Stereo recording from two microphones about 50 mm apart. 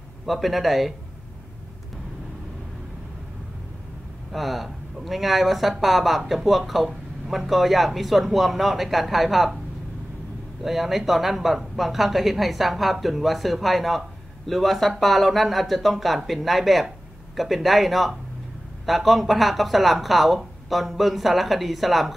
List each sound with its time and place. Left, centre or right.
0.3 s speech: centre
4.3 s speech: centre
10.6 s speech: centre